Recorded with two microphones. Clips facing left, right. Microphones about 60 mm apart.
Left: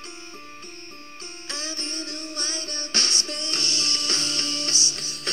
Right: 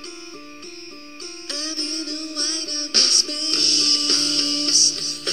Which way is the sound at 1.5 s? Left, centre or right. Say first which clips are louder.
Right 3 dB; left.